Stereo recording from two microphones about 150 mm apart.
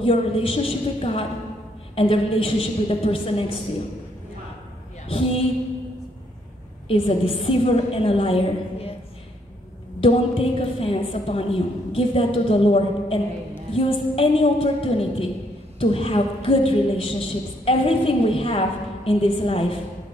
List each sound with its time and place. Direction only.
0.0 s a woman's voice: 40° left (ahead or behind)
5.0 s a sound: 40° left (ahead or behind)
6.9 s a woman's voice: 40° left (ahead or behind)
9.9 s a woman's voice: 40° left (ahead or behind)